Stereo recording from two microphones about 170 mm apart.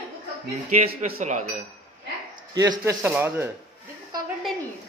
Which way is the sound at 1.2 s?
45° right (ahead or behind).